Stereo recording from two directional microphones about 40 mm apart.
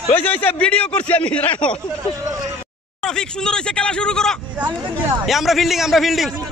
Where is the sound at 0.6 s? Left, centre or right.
Left.